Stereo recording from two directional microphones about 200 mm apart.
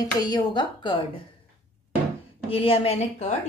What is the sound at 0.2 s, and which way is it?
Speech, 20° left (ahead or behind).